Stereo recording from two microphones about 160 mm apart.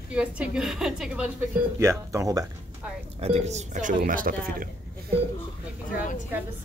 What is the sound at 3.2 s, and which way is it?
Speech, 40° right (ahead or behind).